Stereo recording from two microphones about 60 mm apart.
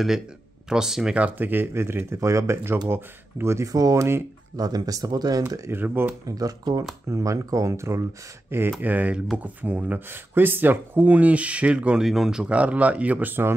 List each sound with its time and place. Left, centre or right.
0.7 s speech: centre
1.1 s speech: right
2.1 s speech: right
3.6 s speech: right
5.7 s speech: right
6.2 s speech: right
7.1 s speech: right
8.5 s speech: right
8.8 s speech: right
12.0 s speech: centre
12.5 s speech: right